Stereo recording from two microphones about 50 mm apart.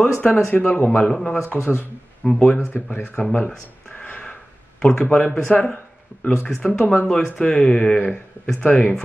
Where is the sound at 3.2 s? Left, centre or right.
Left.